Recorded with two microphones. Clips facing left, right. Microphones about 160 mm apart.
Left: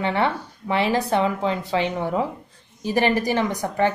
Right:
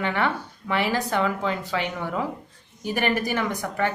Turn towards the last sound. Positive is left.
turn(degrees=30)  # may be behind; listen again after turning